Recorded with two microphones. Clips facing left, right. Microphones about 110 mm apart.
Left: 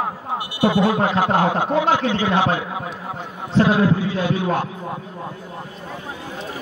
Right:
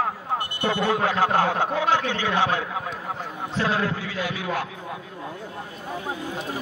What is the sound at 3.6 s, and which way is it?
Speech, 15° left (ahead or behind).